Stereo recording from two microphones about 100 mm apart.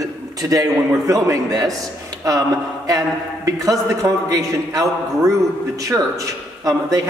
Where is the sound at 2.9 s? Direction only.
35° right (ahead or behind).